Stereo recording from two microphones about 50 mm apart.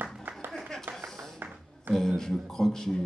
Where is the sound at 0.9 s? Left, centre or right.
Centre.